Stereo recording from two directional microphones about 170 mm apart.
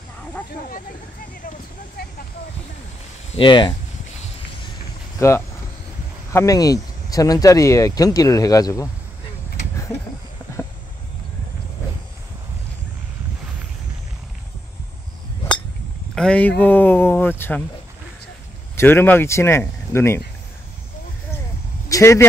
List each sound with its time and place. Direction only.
2.0 s vehicle: 65° left (ahead or behind)
3.3 s speech: 30° left (ahead or behind)
5.2 s speech: 15° left (ahead or behind)
16.2 s speech: 5° left (ahead or behind)
18.8 s speech: 10° left (ahead or behind)
21.8 s a sound: 20° left (ahead or behind)